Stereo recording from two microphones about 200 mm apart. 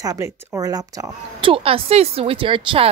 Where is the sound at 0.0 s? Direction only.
15° right (ahead or behind).